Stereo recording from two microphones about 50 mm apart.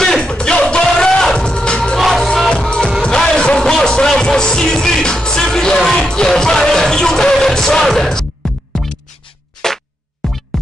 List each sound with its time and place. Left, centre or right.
0.0 s music: centre
2.0 s music: centre
10.2 s music: centre